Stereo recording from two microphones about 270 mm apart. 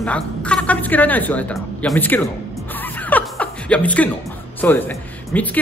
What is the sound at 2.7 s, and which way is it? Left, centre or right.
Music, centre.